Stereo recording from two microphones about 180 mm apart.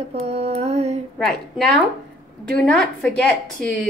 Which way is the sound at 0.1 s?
35° right (ahead or behind).